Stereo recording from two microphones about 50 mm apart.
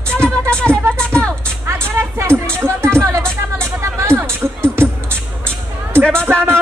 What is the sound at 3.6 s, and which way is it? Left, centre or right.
Music, right.